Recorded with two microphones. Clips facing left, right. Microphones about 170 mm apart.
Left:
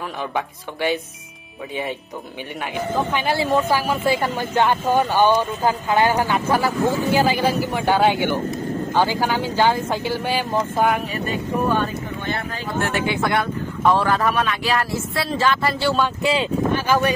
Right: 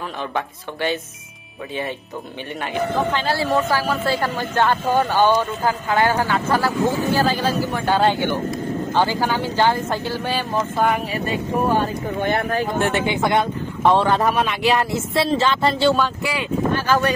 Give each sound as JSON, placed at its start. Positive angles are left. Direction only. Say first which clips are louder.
{"t": 0.3, "sound": "speech", "louder": "even", "side_deg": 10}
{"t": 3.1, "sound": "speech", "louder": "even", "side_deg": 15}
{"t": 12.7, "sound": "speech", "louder": "right 2 dB", "side_deg": -20}
{"t": 16.0, "sound": "speech", "louder": "left 2 dB", "side_deg": 20}